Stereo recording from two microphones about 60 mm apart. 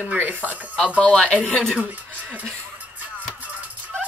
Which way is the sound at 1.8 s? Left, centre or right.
Right.